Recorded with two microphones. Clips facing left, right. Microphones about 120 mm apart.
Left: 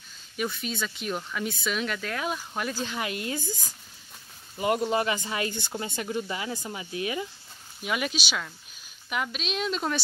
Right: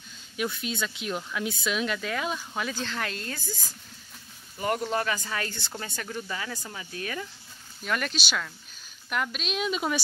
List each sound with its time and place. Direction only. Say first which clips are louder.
0.4 s speech: even; centre (ahead or behind); by 3.5 s 20° left (ahead or behind)
4.6 s speech: left 3 dB; 15° left (ahead or behind); by 9.9 s 5° right (ahead or behind)